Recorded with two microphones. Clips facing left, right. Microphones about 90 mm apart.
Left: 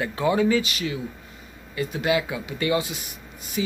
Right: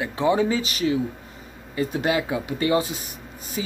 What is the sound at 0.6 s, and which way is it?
Speech, 35° right (ahead or behind).